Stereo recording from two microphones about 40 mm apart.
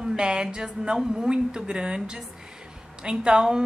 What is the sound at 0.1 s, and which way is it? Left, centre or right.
A woman's voice, centre.